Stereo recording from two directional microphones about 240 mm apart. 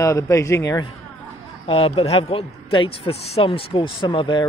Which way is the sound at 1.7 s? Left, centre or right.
Left.